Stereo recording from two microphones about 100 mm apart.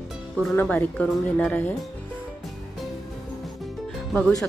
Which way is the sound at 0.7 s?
15° left (ahead or behind).